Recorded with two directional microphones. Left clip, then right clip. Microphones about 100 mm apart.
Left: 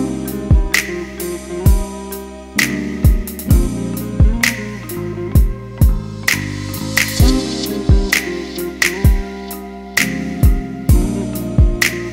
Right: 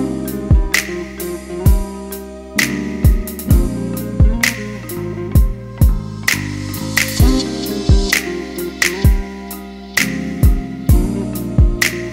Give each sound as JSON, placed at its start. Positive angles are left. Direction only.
{"t": 0.0, "sound": "music", "side_deg": 0}
{"t": 7.2, "sound": "music", "side_deg": -15}
{"t": 7.5, "sound": "music", "side_deg": 20}
{"t": 8.1, "sound": "music", "side_deg": 0}
{"t": 9.9, "sound": "music", "side_deg": 0}